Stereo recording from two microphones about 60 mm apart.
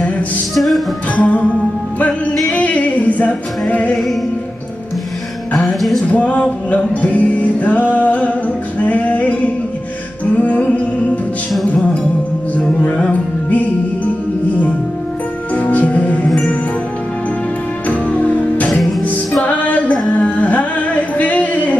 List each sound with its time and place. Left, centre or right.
0.6 s music: centre
1.1 s music: left
2.5 s music: left
3.9 s music: centre
6.0 s music: left
12.5 s music: left
15.5 s music: left
17.8 s music: left